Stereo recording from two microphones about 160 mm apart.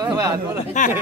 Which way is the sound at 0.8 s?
50° left (ahead or behind).